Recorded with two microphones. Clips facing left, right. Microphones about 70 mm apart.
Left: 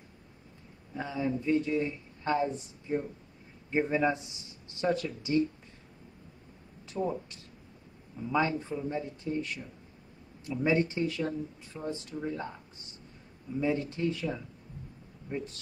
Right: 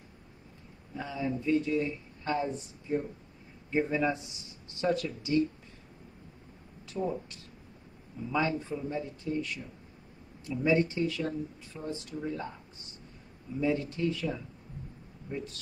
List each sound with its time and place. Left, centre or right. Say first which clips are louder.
0.9 s speech: left 2 dB; left
6.9 s speech: left 1 dB; left
13.6 s speech: even; left